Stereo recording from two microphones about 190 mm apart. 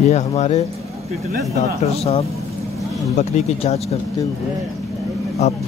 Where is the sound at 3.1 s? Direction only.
35° left (ahead or behind).